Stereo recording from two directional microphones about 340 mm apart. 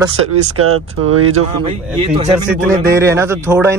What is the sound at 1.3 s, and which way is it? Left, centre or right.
A man's voice, centre.